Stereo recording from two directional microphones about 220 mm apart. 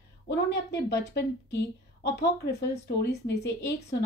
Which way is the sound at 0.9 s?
50° left (ahead or behind).